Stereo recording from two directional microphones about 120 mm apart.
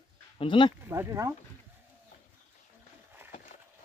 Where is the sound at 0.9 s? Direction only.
25° right (ahead or behind).